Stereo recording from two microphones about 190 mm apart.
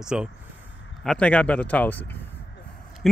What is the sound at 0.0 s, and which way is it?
Speech, 5° right (ahead or behind).